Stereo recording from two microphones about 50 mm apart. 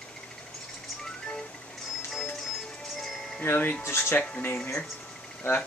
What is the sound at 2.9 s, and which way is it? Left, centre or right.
Music, centre.